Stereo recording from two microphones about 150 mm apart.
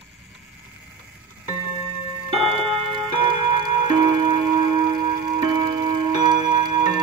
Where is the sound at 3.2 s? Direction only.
30° right (ahead or behind).